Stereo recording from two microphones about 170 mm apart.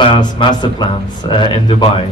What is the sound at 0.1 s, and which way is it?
Speech, 25° left (ahead or behind).